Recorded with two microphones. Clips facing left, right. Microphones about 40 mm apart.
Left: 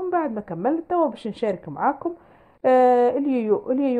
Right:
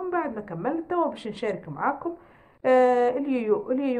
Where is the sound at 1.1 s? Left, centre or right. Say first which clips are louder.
Left 4 dB; centre.